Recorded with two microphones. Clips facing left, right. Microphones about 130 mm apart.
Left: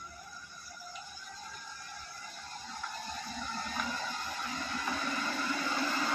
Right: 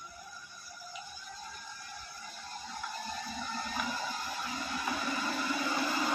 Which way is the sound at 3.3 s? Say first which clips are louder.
Right 1 dB; 5° right (ahead or behind).